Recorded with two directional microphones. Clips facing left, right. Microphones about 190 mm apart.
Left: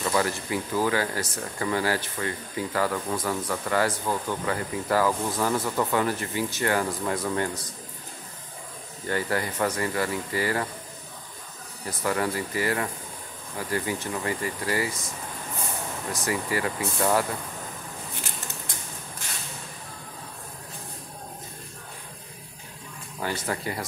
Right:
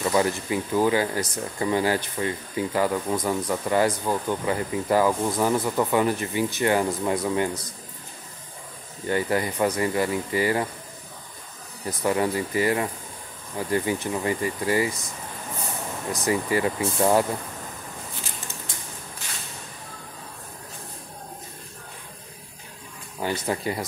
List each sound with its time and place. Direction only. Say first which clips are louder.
0.0 s speech: right 3 dB; 20° right (ahead or behind)
9.0 s speech: right 3 dB; 20° right (ahead or behind)
12.0 s speech: right 3 dB; 20° right (ahead or behind)
16.1 s speech: right 5 dB; 20° right (ahead or behind)
23.2 s speech: right 3 dB; 20° right (ahead or behind)